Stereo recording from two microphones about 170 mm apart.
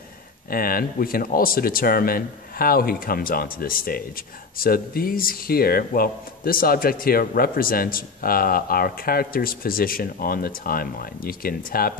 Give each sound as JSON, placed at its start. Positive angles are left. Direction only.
{"t": 0.5, "sound": "speech", "side_deg": 60}